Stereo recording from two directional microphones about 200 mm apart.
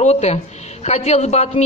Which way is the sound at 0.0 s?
35° left (ahead or behind).